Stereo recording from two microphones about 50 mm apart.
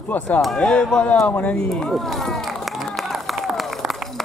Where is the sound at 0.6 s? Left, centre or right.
Centre.